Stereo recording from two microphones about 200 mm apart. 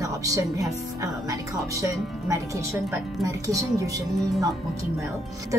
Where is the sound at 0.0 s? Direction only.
15° right (ahead or behind).